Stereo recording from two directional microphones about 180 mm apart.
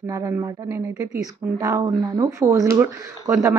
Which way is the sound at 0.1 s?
15° right (ahead or behind).